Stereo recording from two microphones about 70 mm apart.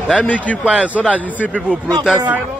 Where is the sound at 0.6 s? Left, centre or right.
Centre.